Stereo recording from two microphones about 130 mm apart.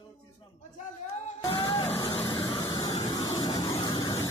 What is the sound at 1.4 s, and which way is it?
Music, 30° left (ahead or behind).